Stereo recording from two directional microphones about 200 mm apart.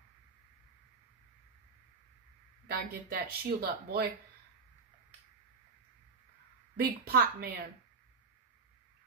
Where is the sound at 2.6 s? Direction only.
50° right (ahead or behind).